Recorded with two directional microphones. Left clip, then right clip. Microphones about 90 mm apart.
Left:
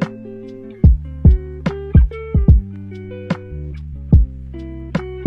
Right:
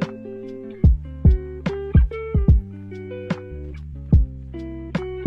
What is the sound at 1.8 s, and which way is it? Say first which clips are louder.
Music: left 2 dB; 40° left (ahead or behind).